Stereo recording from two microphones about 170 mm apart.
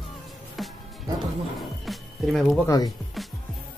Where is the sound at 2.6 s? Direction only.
20° left (ahead or behind).